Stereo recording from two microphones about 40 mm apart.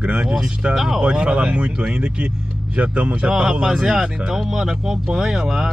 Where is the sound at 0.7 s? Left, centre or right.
Centre.